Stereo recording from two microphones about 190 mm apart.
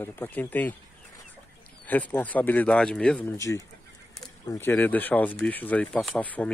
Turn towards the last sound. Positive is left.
turn(degrees=5)  # may be behind; listen again after turning